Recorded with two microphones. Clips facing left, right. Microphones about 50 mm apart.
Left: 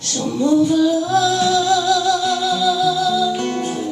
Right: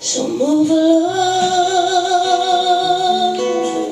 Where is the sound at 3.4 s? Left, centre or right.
Right.